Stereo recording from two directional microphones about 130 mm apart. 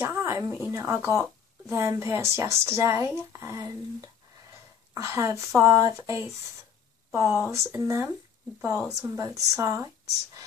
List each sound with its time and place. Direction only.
0.0 s speech: 20° right (ahead or behind)
8.5 s a woman's voice: 10° right (ahead or behind)
9.0 s speech: 25° right (ahead or behind)